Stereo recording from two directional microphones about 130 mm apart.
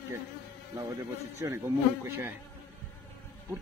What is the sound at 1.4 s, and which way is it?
Speech, 20° right (ahead or behind).